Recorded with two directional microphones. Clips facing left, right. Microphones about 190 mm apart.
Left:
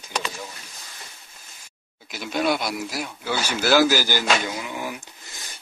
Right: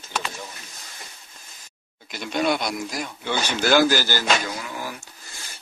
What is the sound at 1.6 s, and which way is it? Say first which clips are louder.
Speech: even; 5° left (ahead or behind).